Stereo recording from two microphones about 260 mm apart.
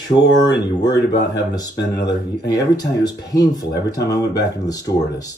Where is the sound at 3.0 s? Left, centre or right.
Left.